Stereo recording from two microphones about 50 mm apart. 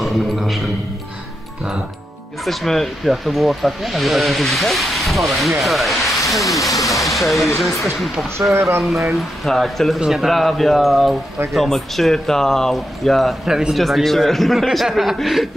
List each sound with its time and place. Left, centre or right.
0.0 s a man's voice: centre
2.4 s speech: centre
8.5 s speech: right
9.1 s speech: centre
9.9 s speech: centre
13.5 s speech: centre
13.7 s speech: centre